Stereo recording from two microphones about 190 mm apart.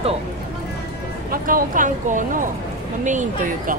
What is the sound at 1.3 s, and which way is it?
Speech, 50° right (ahead or behind).